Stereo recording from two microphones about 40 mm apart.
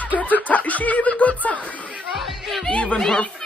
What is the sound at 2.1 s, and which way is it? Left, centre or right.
Music, centre.